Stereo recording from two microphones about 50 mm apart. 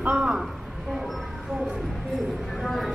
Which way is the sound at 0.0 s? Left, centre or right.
Right.